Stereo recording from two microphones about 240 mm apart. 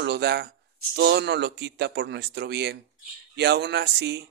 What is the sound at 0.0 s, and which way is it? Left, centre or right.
Speech, right.